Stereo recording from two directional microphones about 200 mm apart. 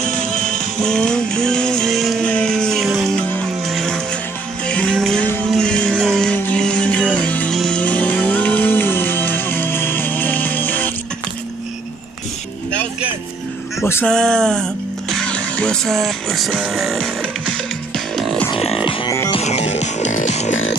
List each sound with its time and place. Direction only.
0.0 s music: 5° left (ahead or behind)
13.8 s speech: 10° left (ahead or behind)
17.9 s music: centre (ahead or behind)
18.5 s music: 30° left (ahead or behind)